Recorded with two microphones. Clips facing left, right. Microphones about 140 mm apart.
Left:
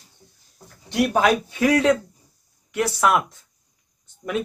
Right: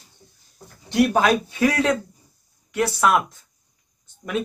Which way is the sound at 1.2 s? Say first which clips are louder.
Even; 15° left (ahead or behind).